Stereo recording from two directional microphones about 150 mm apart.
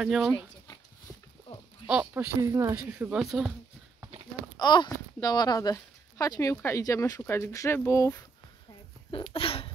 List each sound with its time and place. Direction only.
1.9 s speech: 10° right (ahead or behind)
2.8 s speech: 10° right (ahead or behind)
4.6 s speech: 30° left (ahead or behind)
9.1 s a sound: 35° left (ahead or behind)